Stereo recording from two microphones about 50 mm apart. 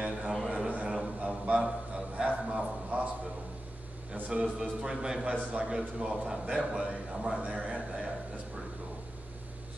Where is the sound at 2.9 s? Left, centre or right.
Right.